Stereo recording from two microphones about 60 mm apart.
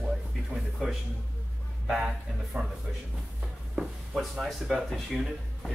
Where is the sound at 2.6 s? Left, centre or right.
Centre.